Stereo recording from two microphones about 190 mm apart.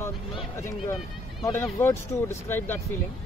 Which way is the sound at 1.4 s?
15° left (ahead or behind).